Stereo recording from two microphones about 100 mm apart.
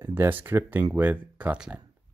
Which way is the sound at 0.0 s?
20° right (ahead or behind).